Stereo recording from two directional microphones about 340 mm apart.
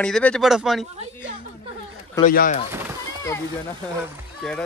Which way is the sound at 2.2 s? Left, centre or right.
Left.